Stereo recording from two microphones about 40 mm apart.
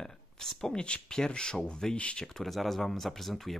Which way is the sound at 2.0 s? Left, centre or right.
Left.